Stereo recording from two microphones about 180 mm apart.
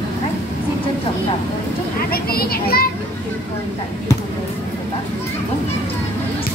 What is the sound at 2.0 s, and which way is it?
Children playing, 55° left (ahead or behind).